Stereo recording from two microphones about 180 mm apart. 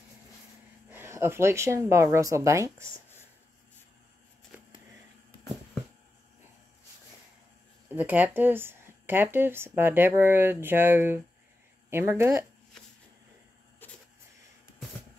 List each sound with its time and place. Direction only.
0.8 s speech: 10° right (ahead or behind)
7.9 s speech: 10° right (ahead or behind)
13.8 s a sound: 10° left (ahead or behind)